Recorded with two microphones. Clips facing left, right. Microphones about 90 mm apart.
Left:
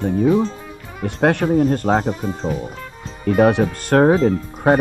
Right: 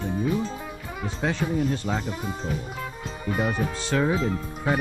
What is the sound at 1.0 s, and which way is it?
Speech, 60° left (ahead or behind).